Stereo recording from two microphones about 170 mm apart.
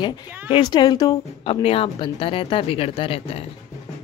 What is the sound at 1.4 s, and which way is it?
Speech, 35° left (ahead or behind).